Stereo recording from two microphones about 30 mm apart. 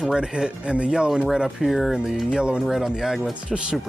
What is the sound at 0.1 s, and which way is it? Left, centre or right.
Speech, right.